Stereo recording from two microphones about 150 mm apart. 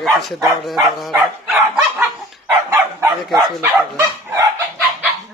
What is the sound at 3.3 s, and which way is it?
Speech, centre (ahead or behind).